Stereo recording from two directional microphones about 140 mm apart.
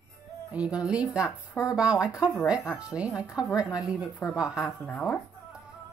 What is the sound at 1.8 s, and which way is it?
Speech, 5° right (ahead or behind).